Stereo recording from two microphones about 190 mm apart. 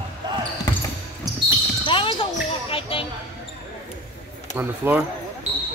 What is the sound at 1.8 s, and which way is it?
Basketball bounce, 25° left (ahead or behind).